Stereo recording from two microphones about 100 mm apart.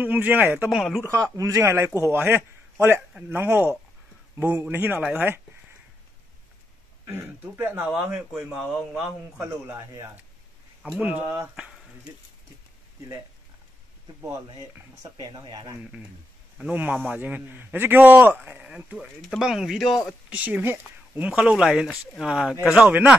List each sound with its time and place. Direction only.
0.0 s a man's voice: 20° right (ahead or behind)
0.7 s speech: centre (ahead or behind)
1.0 s speech: 30° right (ahead or behind)
7.1 s speech: 20° right (ahead or behind)
8.3 s speech: centre (ahead or behind)
11.0 s a man's voice: 15° right (ahead or behind)
15.0 s speech: 40° right (ahead or behind)
16.5 s a man's voice: 15° right (ahead or behind)
20.2 s a man's voice: 15° right (ahead or behind)